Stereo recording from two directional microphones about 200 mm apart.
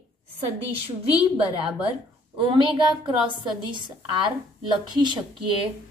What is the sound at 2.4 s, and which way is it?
A woman's voice, 25° right (ahead or behind).